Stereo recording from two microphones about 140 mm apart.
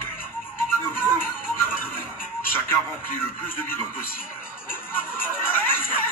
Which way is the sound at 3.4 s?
15° left (ahead or behind).